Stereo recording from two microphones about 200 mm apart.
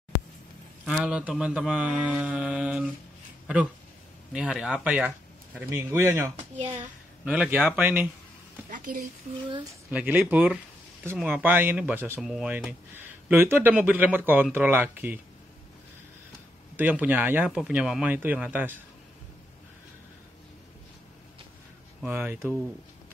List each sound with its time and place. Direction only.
0.8 s mantra: 5° right (ahead or behind)
4.3 s speech: 5° right (ahead or behind)
8.6 s a woman's voice: 40° right (ahead or behind)
9.8 s speech: 10° right (ahead or behind)
16.7 s speech: 10° right (ahead or behind)
22.0 s speech: 10° right (ahead or behind)